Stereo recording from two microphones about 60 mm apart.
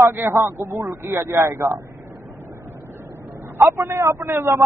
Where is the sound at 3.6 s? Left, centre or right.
Right.